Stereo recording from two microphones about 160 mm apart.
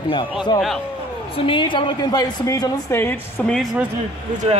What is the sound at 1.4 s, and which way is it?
A woman's voice, 30° left (ahead or behind).